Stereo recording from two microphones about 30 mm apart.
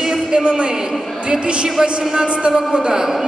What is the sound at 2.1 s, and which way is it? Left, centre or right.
Speech, right.